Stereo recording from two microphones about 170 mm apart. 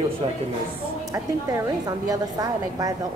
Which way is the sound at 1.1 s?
20° right (ahead or behind).